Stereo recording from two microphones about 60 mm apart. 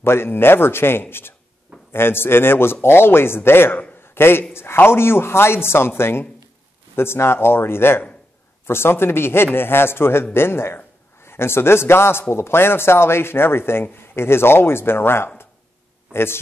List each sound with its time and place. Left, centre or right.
0.0 s a man's voice: left